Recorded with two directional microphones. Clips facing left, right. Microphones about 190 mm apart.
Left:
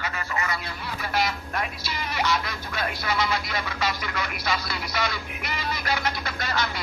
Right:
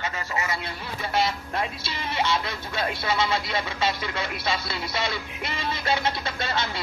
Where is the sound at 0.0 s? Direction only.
25° right (ahead or behind).